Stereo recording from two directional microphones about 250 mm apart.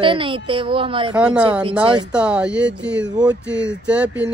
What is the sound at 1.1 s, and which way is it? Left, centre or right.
Speech, centre.